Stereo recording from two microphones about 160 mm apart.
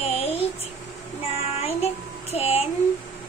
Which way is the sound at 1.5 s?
40° left (ahead or behind).